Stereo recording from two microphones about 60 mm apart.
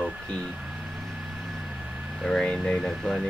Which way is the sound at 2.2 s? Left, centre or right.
Centre.